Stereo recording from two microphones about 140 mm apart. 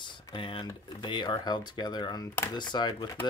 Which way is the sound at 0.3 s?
40° left (ahead or behind).